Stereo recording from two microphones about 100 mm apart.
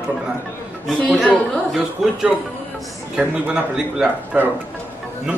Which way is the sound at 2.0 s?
5° right (ahead or behind).